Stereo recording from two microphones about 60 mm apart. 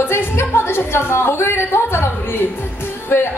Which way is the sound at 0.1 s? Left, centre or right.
Left.